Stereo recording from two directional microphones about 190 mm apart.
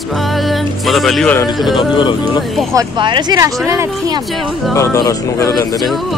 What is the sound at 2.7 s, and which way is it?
Speech, 25° right (ahead or behind).